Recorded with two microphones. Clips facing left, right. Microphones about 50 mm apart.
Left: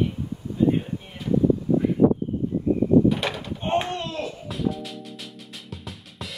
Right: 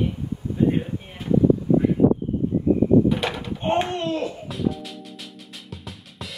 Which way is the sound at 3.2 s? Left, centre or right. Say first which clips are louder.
Right 2 dB; right.